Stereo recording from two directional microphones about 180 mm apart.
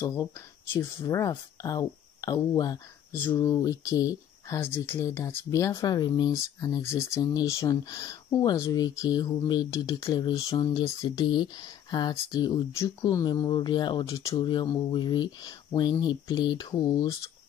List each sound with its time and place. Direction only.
0.0 s speech: 15° left (ahead or behind)